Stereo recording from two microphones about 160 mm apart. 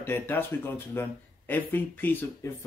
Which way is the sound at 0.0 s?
15° left (ahead or behind).